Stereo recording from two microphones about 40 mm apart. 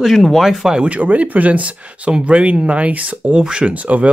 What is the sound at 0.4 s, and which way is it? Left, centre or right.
Speech, centre.